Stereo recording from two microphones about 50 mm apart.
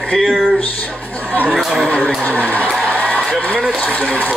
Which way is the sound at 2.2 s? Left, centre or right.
Left.